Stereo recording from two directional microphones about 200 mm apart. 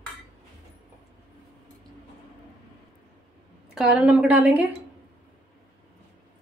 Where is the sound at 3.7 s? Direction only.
5° right (ahead or behind).